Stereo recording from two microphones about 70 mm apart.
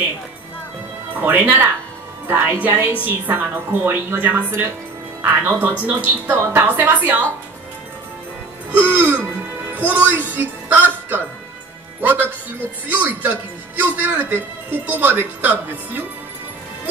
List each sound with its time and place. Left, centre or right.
1.2 s a woman's voice: right
8.7 s a woman's voice: right
12.8 s a woman's voice: right